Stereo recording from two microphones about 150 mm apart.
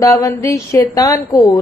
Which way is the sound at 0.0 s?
20° left (ahead or behind).